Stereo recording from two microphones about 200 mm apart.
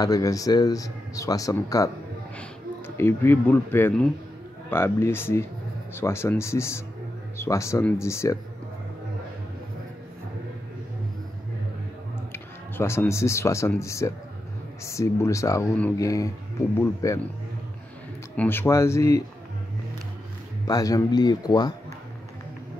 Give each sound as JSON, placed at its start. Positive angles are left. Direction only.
{"t": 0.0, "sound": "speech", "side_deg": 15}
{"t": 3.0, "sound": "speech", "side_deg": 10}
{"t": 12.3, "sound": "speech", "side_deg": 10}
{"t": 18.3, "sound": "speech", "side_deg": 10}
{"t": 20.6, "sound": "speech", "side_deg": 20}